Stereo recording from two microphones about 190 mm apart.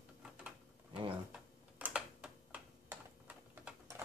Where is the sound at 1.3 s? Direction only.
5° right (ahead or behind).